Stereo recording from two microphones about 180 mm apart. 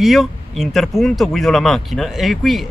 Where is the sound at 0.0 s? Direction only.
Centre (ahead or behind).